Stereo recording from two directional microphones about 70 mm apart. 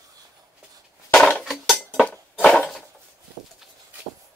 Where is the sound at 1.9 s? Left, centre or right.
Left.